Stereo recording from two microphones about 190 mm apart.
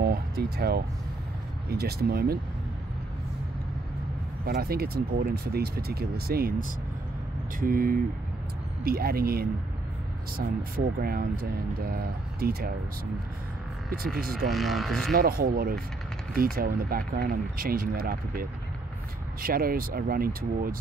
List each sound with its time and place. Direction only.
0.0 s music: 55° right (ahead or behind)
1.7 s speech: 55° right (ahead or behind)
4.5 s speech: 55° right (ahead or behind)
11.0 s speech: 50° right (ahead or behind)
13.8 s speech: 50° right (ahead or behind)
14.5 s speech: centre (ahead or behind)
15.1 s speech: 50° right (ahead or behind)